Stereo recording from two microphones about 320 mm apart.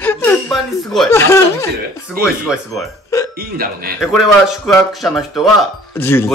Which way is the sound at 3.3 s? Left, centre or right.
Right.